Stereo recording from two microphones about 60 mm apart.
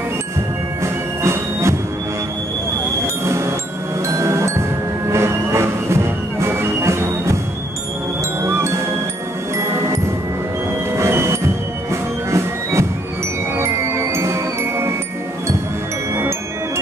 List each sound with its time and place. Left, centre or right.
1.2 s music: right
4.1 s music: right
8.4 s music: right
11.0 s music: right